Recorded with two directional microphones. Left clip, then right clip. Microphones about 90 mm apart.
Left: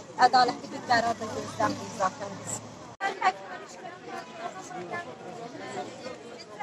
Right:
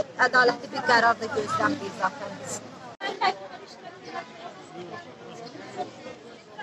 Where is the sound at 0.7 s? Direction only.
25° right (ahead or behind).